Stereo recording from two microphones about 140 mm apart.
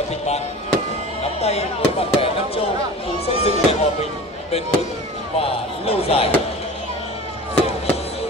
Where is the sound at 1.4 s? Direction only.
50° left (ahead or behind).